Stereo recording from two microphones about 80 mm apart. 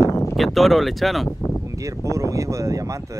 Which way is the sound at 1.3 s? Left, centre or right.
Left.